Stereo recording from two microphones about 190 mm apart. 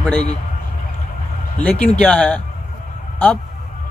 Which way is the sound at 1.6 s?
5° left (ahead or behind).